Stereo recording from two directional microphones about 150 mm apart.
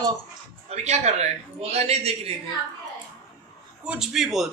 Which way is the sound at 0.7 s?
45° right (ahead or behind).